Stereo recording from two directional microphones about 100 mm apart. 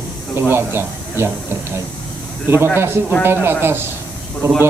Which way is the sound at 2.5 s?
25° right (ahead or behind).